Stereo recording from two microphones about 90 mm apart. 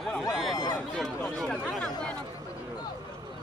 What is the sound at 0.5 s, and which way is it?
Speech, 50° left (ahead or behind).